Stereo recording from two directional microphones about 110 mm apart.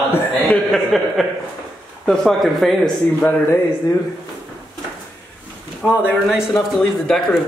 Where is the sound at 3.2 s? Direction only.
20° left (ahead or behind).